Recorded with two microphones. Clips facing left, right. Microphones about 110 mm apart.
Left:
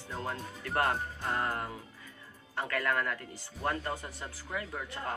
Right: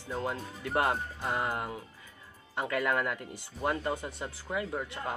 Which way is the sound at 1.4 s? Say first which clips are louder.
Right 1 dB; 20° right (ahead or behind).